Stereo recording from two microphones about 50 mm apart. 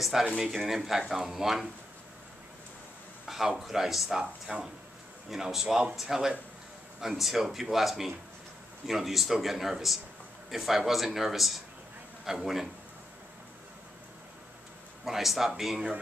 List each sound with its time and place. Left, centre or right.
0.0 s speech: centre
3.3 s speech: centre
5.3 s speech: centre
15.0 s speech: centre